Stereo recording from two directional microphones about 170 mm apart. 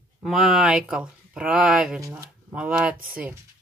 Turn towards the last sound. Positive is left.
turn(degrees=-5)  # may be behind; listen again after turning